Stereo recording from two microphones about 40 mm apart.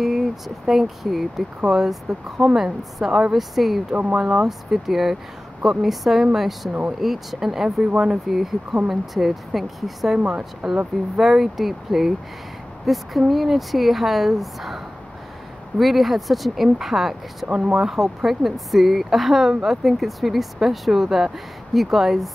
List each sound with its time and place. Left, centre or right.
0.0 s speech: centre
3.9 s speech: right
4.2 s speech: right
4.5 s speech: centre
15.8 s speech: centre
17.5 s speech: right
17.8 s speech: centre